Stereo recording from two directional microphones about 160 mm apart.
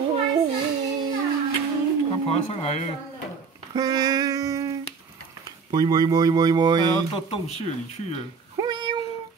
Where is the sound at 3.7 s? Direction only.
25° right (ahead or behind).